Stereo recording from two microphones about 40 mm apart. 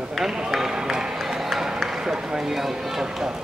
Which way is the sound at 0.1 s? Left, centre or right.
Centre.